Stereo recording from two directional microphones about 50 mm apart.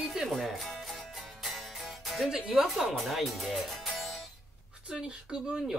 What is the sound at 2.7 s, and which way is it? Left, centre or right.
Speech, centre.